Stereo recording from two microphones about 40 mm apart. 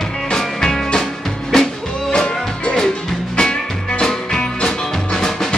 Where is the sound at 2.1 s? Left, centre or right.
Centre.